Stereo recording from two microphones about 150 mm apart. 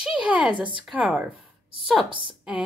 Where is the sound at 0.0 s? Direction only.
5° right (ahead or behind).